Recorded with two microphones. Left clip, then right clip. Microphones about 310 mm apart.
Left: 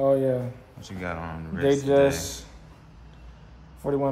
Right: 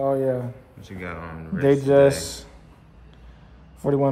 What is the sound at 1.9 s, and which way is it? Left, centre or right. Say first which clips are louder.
Speech: right 6 dB; right.